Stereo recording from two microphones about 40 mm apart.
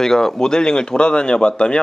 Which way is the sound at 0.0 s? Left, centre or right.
Centre.